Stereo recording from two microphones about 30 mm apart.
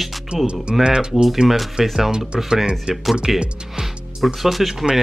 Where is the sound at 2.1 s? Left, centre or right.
Right.